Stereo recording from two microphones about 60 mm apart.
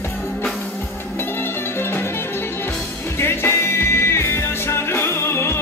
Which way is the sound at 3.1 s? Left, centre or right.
Left.